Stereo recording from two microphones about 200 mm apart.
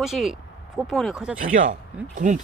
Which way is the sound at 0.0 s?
Centre (ahead or behind).